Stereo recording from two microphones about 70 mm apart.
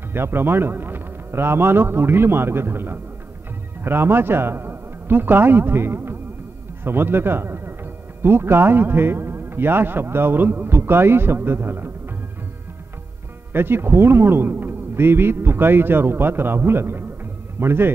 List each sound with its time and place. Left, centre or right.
0.1 s a man's voice: right
13.5 s a man's voice: right